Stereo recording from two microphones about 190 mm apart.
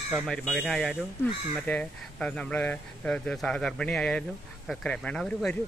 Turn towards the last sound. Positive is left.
turn(degrees=5)  # may be behind; listen again after turning